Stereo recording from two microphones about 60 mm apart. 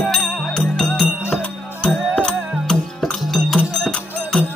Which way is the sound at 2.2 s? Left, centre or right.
Centre.